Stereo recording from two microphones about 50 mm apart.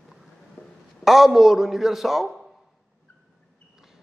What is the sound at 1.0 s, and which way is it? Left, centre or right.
A man's voice, centre.